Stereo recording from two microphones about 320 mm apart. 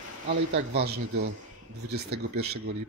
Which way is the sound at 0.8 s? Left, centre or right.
Right.